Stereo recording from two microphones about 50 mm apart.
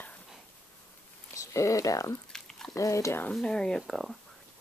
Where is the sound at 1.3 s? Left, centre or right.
Left.